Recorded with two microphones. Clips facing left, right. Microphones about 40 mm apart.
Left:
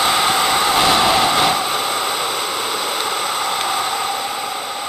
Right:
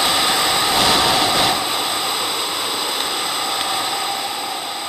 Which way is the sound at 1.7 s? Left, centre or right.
Left.